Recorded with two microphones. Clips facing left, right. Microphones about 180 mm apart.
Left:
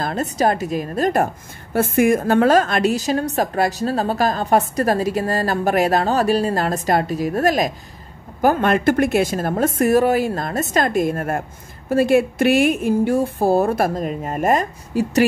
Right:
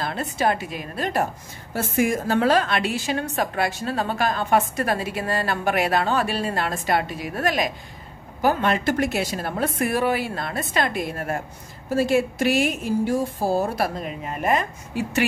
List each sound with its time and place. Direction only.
0.0 s a woman's voice: 40° left (ahead or behind)